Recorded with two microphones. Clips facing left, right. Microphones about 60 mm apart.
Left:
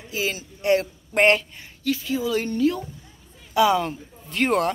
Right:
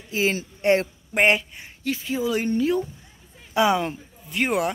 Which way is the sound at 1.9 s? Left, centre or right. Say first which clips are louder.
Left 1 dB; right.